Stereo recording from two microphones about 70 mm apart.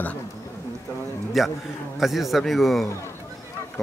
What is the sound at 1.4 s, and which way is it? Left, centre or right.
A man's voice, centre.